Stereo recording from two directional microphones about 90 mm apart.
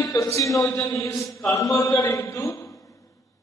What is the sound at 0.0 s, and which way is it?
A man's voice, 35° left (ahead or behind).